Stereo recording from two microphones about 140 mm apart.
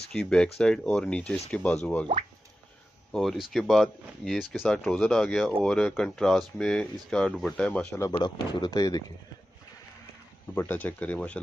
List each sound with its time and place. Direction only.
0.1 s speech: 5° left (ahead or behind)
3.1 s speech: centre (ahead or behind)
8.2 s speech: 30° left (ahead or behind)
10.5 s speech: 15° left (ahead or behind)